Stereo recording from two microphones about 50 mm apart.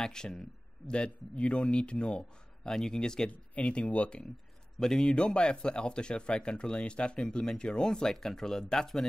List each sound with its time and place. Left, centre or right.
0.0 s speech: centre
0.9 s a man's voice: left
3.3 s a man's voice: left
4.7 s speech: centre